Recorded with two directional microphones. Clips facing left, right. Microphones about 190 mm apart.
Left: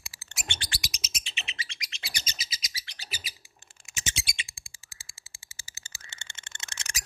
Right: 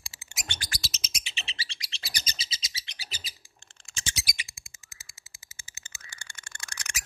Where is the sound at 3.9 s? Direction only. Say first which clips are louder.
Left 1 dB; 20° left (ahead or behind).